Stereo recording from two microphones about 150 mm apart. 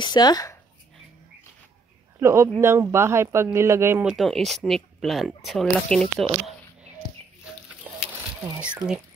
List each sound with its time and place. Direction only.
0.0 s speech: 30° left (ahead or behind)
2.1 s speech: 20° right (ahead or behind)
4.0 s speech: centre (ahead or behind)
7.8 s a sound: 10° right (ahead or behind)